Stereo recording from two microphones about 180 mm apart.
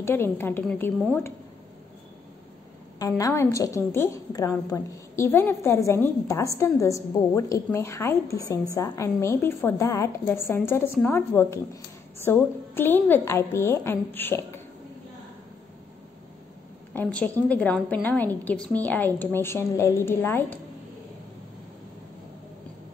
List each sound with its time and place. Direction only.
0.0 s a woman's voice: 15° left (ahead or behind)
3.0 s a woman's voice: 20° left (ahead or behind)
16.9 s a woman's voice: 10° left (ahead or behind)